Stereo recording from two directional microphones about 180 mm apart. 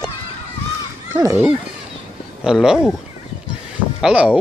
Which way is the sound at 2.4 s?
5° right (ahead or behind).